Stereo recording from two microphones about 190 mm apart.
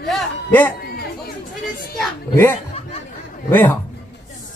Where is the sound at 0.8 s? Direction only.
55° left (ahead or behind).